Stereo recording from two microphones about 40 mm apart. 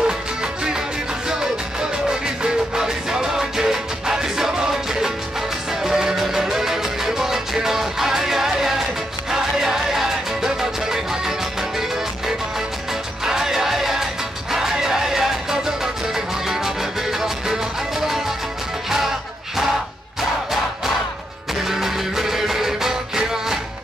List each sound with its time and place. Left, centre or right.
0.0 s music: centre
5.7 s music: centre
13.2 s music: centre
21.6 s music: centre